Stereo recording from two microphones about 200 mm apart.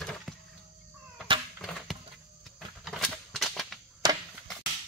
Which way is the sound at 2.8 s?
Centre (ahead or behind).